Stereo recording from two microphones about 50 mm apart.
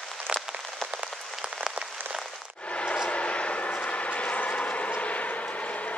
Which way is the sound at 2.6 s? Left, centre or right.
Left.